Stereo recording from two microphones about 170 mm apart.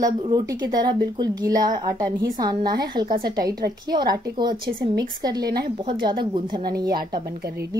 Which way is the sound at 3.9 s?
25° right (ahead or behind).